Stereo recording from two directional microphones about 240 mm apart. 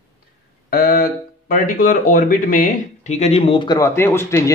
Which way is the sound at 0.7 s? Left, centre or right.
Left.